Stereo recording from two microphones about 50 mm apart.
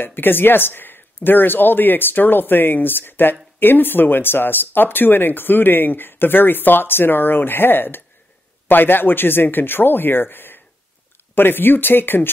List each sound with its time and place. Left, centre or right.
0.0 s speech: left